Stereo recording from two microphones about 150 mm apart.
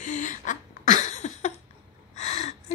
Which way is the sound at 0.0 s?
55° left (ahead or behind).